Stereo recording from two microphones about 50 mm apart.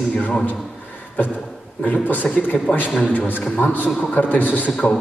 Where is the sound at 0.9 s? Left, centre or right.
Left.